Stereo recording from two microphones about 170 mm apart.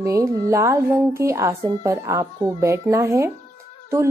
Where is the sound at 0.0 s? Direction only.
15° right (ahead or behind).